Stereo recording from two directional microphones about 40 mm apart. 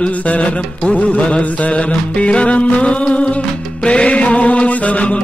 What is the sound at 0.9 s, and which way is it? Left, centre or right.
Music, left.